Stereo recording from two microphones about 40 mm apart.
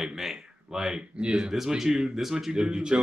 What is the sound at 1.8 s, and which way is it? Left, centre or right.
Speech, centre.